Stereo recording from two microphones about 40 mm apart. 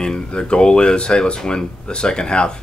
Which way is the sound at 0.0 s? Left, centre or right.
Centre.